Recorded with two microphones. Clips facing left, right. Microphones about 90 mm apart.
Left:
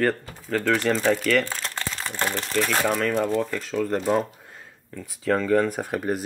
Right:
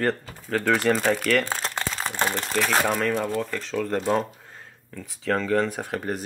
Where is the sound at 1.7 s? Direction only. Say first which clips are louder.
Right 2 dB; 15° right (ahead or behind).